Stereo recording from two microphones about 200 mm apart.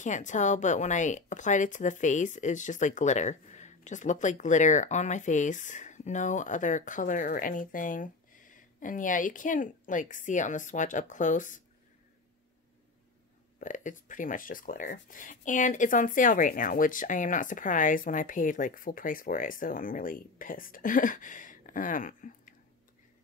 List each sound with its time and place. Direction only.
0.0 s speech: 40° left (ahead or behind)
13.6 s speech: 40° left (ahead or behind)